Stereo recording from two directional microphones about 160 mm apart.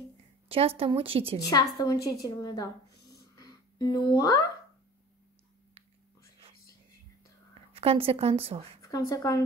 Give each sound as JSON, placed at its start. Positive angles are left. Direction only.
{"t": 0.5, "sound": "speech", "side_deg": -35}
{"t": 1.5, "sound": "a woman's voice", "side_deg": 25}
{"t": 3.3, "sound": "music", "side_deg": 25}
{"t": 7.7, "sound": "speech", "side_deg": -40}
{"t": 8.8, "sound": "speech", "side_deg": 20}